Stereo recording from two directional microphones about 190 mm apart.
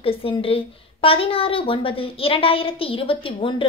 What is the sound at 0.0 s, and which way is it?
A woman's voice, 30° left (ahead or behind).